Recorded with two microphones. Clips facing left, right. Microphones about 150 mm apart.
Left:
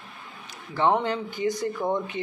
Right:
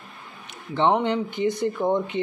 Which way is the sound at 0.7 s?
20° right (ahead or behind).